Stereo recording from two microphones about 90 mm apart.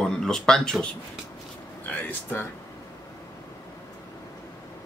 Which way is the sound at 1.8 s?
20° left (ahead or behind).